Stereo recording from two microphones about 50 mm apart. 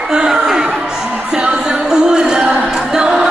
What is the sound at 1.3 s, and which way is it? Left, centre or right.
Music, centre.